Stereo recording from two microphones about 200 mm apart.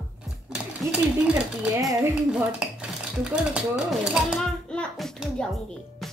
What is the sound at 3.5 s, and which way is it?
A child's voice, 5° right (ahead or behind).